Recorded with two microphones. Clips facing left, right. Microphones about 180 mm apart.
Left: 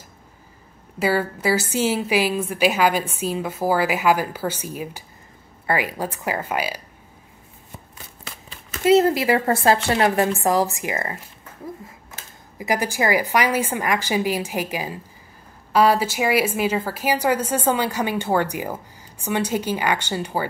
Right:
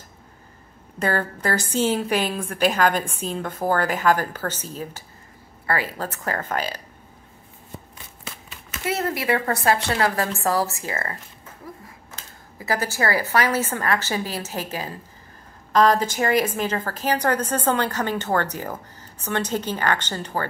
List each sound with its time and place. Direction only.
0.9 s a woman's voice: 5° left (ahead or behind)
8.8 s a woman's voice: 25° left (ahead or behind)
12.5 s a woman's voice: 15° left (ahead or behind)